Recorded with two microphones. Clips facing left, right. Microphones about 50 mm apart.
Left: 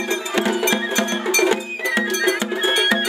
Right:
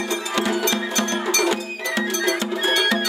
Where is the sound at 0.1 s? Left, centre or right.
Left.